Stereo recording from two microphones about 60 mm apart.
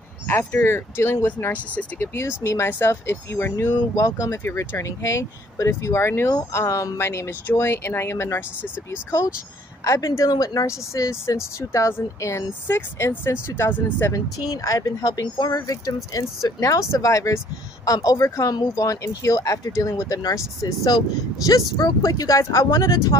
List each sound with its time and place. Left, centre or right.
0.3 s speech: left
9.8 s speech: left
12.6 s speech: left
14.1 s speech: left
17.8 s speech: left